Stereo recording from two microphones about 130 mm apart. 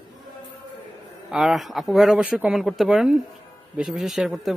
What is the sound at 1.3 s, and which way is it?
Speech, centre (ahead or behind).